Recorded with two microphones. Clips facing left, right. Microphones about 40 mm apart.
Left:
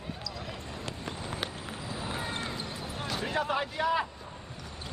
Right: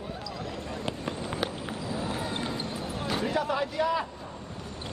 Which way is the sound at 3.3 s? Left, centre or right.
Left.